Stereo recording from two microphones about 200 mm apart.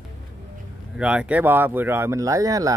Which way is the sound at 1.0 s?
5° right (ahead or behind).